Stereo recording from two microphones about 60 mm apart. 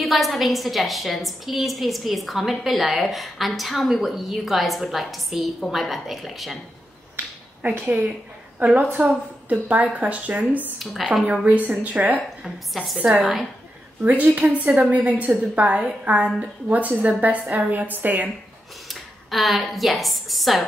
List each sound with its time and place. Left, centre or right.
0.0 s a woman's voice: centre
7.7 s a woman's voice: right
10.8 s a woman's voice: centre
11.6 s a woman's voice: right
12.4 s a woman's voice: centre
14.0 s a woman's voice: right
18.9 s a woman's voice: centre